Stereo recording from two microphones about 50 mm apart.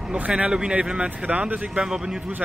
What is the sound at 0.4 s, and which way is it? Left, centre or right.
Speech, centre.